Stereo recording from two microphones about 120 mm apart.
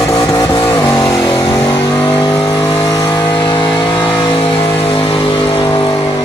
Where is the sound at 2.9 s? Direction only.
35° left (ahead or behind).